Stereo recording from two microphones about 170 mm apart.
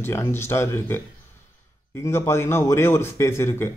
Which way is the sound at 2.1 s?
15° left (ahead or behind).